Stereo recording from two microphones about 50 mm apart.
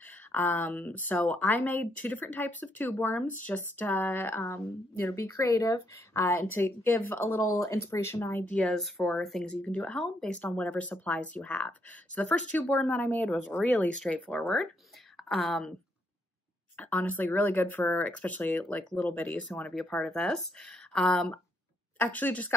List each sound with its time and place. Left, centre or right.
0.3 s speech: left
5.1 s speech: left
6.1 s speech: left
7.4 s speech: left
8.6 s speech: centre
9.6 s speech: left
9.8 s speech: left
10.4 s speech: left
15.2 s a woman's voice: centre
16.7 s speech: left
19.6 s speech: centre
21.9 s speech: left